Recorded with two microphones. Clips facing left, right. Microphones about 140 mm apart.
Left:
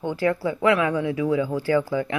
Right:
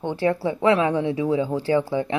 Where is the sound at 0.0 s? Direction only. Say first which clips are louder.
Right 1 dB; 25° right (ahead or behind).